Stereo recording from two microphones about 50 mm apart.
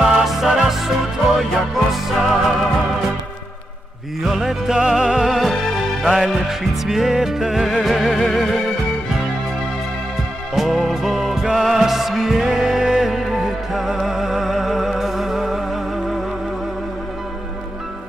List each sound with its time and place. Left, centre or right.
0.0 s music: centre
4.2 s music: centre
10.5 s music: centre